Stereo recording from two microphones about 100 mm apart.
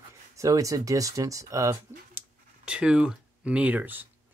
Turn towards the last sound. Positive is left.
turn(degrees=-15)  # may be behind; listen again after turning